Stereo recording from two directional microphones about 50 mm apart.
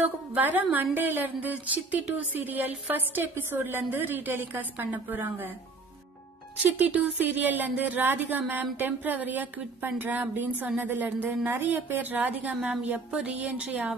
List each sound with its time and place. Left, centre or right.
0.0 s speech: right
3.2 s a woman's voice: right
6.6 s speech: right